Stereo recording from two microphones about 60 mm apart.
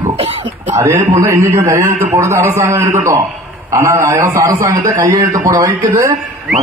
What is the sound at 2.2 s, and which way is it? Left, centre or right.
A man's voice, right.